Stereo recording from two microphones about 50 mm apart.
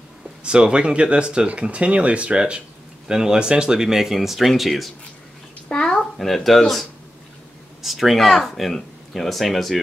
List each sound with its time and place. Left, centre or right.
0.4 s speech: centre
5.7 s a child's voice: centre